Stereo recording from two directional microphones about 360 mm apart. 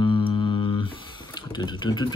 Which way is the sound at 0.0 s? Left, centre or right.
Centre.